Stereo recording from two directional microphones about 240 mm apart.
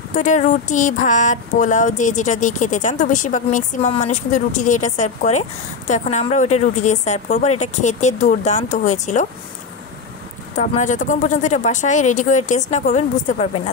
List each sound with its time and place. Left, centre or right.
0.1 s speech: left
10.5 s speech: left